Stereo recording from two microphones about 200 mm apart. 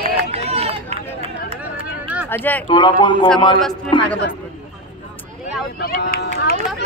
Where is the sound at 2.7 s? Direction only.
25° left (ahead or behind).